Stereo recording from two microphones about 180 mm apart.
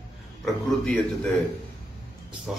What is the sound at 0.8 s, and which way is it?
Speech, 5° left (ahead or behind).